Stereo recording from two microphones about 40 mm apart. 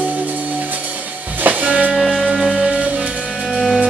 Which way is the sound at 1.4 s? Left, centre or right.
Right.